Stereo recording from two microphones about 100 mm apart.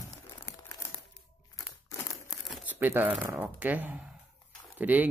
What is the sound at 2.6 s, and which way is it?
Crumpling, 20° right (ahead or behind).